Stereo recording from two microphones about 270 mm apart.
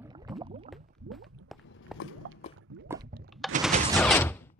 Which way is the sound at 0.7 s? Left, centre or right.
Centre.